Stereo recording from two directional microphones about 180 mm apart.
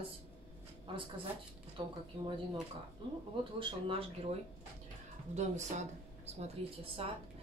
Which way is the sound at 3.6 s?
30° right (ahead or behind).